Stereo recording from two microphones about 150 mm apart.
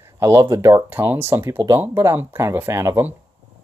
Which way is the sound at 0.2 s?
20° right (ahead or behind).